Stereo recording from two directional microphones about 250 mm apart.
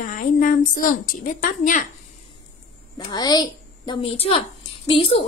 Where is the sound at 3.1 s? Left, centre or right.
Centre.